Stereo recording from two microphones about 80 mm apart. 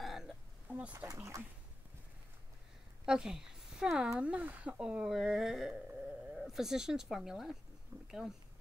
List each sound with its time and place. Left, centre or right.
0.0 s a sound: centre
0.7 s speech: centre
1.0 s speech: right
3.1 s speech: centre